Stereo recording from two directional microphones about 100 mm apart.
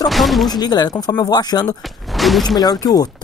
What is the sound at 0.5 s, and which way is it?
A woman's voice, 45° left (ahead or behind).